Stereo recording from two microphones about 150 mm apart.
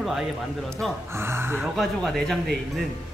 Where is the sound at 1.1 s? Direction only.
15° right (ahead or behind).